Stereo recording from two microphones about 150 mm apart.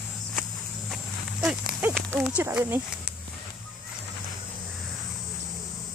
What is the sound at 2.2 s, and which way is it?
Speech, 5° right (ahead or behind).